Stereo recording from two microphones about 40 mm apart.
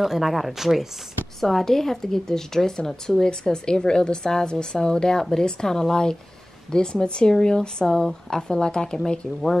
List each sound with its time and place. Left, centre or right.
0.0 s speech: centre
1.4 s a woman's voice: centre
7.8 s a woman's voice: centre